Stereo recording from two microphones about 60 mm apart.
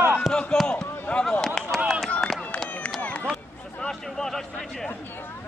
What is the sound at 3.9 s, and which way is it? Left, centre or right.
A man's voice, centre.